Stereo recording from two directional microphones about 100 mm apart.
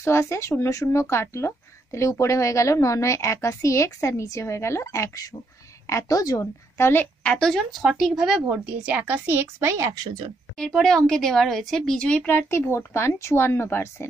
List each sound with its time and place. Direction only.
0.0 s a woman's voice: 25° left (ahead or behind)
7.3 s speech: 5° left (ahead or behind); by 9.8 s 25° right (ahead or behind)
10.6 s a woman's voice: 5° left (ahead or behind)
12.4 s speech: 25° left (ahead or behind)